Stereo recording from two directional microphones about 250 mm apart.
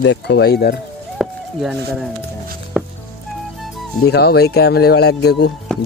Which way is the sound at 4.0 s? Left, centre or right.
Left.